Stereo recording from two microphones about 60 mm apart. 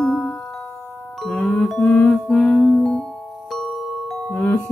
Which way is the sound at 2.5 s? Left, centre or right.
Centre.